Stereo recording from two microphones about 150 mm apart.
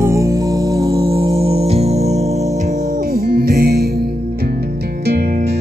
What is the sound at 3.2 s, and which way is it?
Music, 80° right.